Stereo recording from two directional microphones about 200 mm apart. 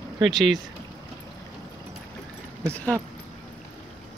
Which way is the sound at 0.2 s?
Centre (ahead or behind).